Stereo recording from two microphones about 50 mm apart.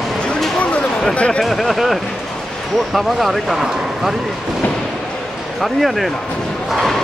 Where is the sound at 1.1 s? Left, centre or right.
Left.